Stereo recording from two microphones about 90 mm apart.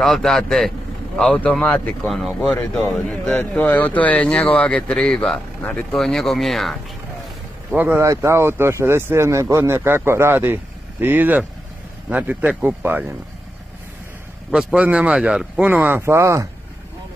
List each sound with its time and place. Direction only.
0.0 s speech: 5° left (ahead or behind)
3.3 s speech: 20° left (ahead or behind); by 6.8 s centre (ahead or behind)
7.7 s a man's voice: 25° right (ahead or behind)
14.5 s a man's voice: 10° right (ahead or behind); by 16.4 s 30° right (ahead or behind)